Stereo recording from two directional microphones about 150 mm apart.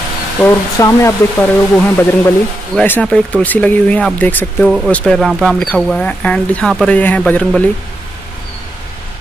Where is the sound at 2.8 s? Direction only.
10° left (ahead or behind).